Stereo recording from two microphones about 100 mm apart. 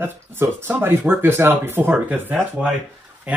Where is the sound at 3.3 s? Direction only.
15° right (ahead or behind).